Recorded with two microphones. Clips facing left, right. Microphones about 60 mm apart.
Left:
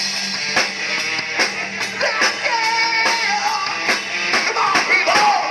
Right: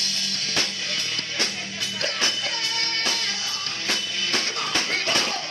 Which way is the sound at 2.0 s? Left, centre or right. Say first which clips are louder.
Left 9 dB; left.